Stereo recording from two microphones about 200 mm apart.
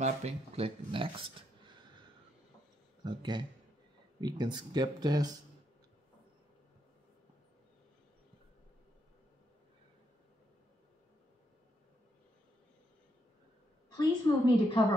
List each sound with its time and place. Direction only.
0.0 s speech: 30° right (ahead or behind)
1.6 s a sound: 20° right (ahead or behind)
3.0 s speech: 20° right (ahead or behind)
13.9 s a woman's voice: 25° left (ahead or behind)